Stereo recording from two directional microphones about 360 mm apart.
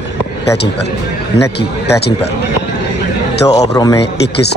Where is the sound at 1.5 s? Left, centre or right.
Left.